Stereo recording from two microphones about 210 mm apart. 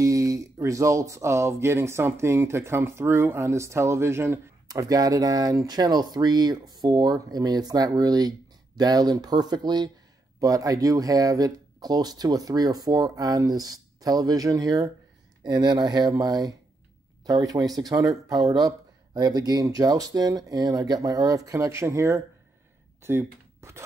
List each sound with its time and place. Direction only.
0.0 s speech: 15° right (ahead or behind)